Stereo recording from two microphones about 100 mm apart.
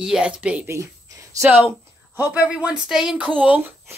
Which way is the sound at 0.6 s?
30° right (ahead or behind).